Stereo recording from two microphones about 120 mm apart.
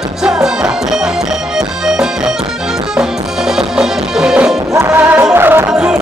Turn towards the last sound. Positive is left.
turn(degrees=-5)  # may be behind; listen again after turning